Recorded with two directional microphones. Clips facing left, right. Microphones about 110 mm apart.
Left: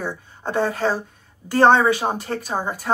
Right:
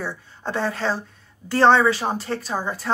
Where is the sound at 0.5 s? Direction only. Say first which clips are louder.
Left 3 dB; 45° left (ahead or behind).